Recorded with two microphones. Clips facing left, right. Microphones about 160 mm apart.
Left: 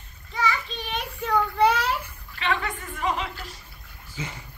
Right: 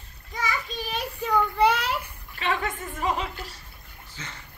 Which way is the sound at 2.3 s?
40° right (ahead or behind).